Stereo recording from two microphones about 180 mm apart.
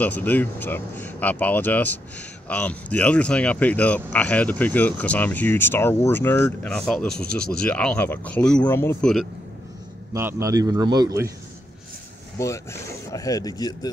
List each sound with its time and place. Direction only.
0.0 s speech: 10° left (ahead or behind)
10.1 s a man's voice: 15° right (ahead or behind)
12.4 s speech: 15° left (ahead or behind)